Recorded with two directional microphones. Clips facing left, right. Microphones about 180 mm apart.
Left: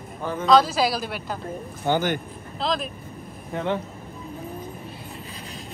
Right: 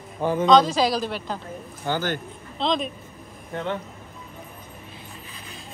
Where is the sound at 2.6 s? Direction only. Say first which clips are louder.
Right 2 dB; 5° left (ahead or behind).